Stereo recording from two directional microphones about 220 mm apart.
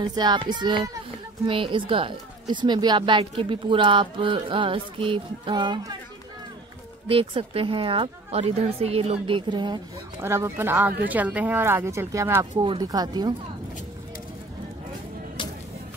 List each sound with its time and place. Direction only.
0.0 s speech: 20° right (ahead or behind)
7.1 s speech: 25° right (ahead or behind)